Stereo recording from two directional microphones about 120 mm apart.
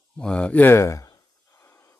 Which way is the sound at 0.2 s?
10° left (ahead or behind).